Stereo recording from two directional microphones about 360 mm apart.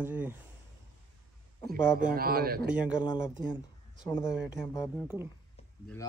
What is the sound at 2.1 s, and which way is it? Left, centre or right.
Speech, right.